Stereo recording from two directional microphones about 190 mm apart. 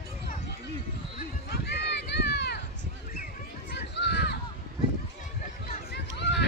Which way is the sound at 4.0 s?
65° left (ahead or behind).